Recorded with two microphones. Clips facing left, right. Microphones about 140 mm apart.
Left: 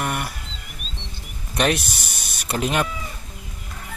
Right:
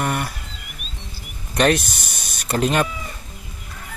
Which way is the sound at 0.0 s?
5° left (ahead or behind).